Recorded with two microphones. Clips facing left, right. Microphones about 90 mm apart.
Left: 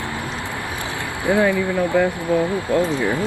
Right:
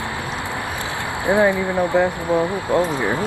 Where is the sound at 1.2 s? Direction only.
20° right (ahead or behind).